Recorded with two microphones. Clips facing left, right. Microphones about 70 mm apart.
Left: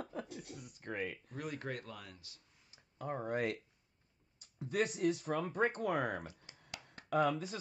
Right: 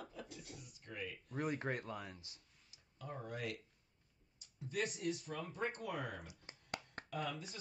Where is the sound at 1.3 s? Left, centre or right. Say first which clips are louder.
Right 3 dB; right.